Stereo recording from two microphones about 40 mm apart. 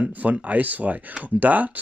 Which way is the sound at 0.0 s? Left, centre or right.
Right.